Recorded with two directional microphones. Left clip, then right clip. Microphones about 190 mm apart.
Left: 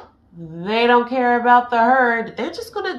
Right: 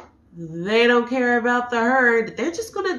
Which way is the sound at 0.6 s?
15° left (ahead or behind).